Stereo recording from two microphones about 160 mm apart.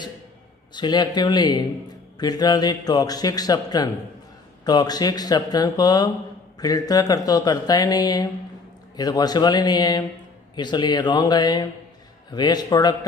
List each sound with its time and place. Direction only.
0.7 s speech: 25° left (ahead or behind)